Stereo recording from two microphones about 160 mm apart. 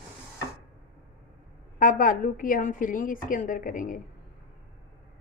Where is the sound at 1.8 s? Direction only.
55° left (ahead or behind).